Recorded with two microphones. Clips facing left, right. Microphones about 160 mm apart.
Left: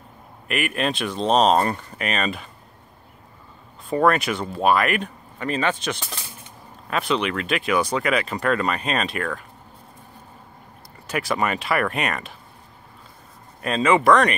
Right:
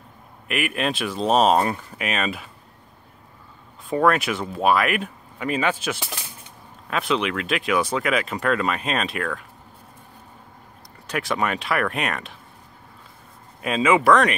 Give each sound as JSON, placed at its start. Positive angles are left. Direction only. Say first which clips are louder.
{"t": 0.5, "sound": "speech", "louder": "even", "side_deg": 0}
{"t": 3.9, "sound": "speech", "louder": "even", "side_deg": 0}
{"t": 11.1, "sound": "speech", "louder": "left 1 dB", "side_deg": 0}
{"t": 13.6, "sound": "speech", "louder": "even", "side_deg": -5}